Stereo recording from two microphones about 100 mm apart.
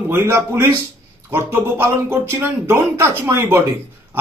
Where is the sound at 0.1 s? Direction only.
25° right (ahead or behind).